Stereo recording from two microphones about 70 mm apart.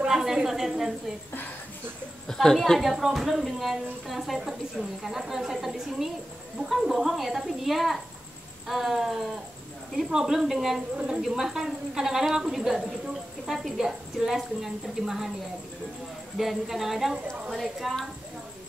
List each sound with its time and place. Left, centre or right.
0.0 s a woman's voice: centre
2.2 s a woman's voice: centre
16.3 s a woman's voice: centre